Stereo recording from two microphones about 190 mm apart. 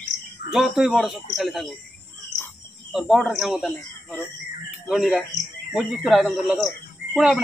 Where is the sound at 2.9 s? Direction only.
Centre (ahead or behind).